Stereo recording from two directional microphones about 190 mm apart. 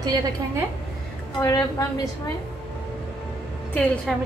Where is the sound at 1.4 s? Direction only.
20° left (ahead or behind).